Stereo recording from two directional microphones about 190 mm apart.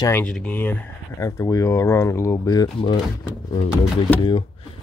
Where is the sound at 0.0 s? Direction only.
10° left (ahead or behind).